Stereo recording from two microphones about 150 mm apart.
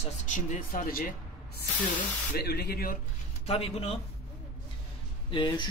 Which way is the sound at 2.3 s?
90° left.